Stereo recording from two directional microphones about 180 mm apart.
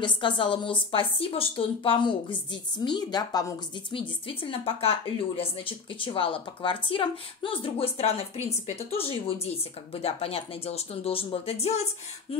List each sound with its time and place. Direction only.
0.0 s a woman's voice: 25° left (ahead or behind)